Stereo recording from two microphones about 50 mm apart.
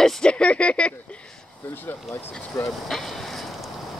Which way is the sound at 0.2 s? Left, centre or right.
Left.